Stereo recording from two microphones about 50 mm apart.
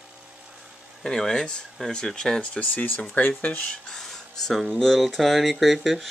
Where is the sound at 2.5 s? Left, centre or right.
Left.